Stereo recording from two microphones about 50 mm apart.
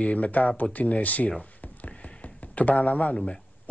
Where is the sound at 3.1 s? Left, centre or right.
Centre.